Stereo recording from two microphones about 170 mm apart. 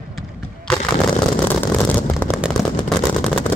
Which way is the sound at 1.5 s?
10° left (ahead or behind).